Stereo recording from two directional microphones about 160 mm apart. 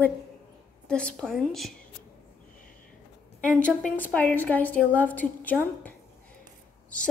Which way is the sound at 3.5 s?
10° left (ahead or behind).